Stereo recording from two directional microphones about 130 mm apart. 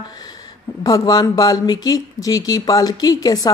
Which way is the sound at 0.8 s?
30° left (ahead or behind).